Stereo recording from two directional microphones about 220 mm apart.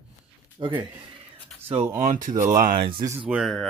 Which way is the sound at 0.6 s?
20° right (ahead or behind).